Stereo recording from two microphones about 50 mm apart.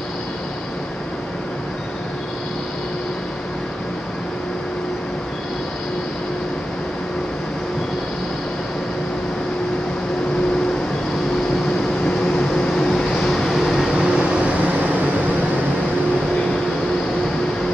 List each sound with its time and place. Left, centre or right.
12.1 s vehicle: centre
14.4 s vehicle: right